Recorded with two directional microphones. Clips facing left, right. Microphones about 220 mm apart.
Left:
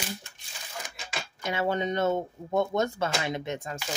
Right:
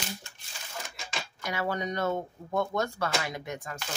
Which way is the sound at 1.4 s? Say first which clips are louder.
Left 4 dB; 25° left (ahead or behind).